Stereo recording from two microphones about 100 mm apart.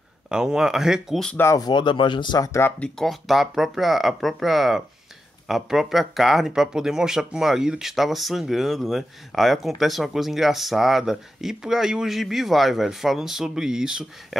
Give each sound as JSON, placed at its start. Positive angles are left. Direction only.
{"t": 0.3, "sound": "speech", "side_deg": -5}
{"t": 1.3, "sound": "speech", "side_deg": 25}
{"t": 1.6, "sound": "speech", "side_deg": 50}
{"t": 2.4, "sound": "speech", "side_deg": 30}
{"t": 2.8, "sound": "speech", "side_deg": 5}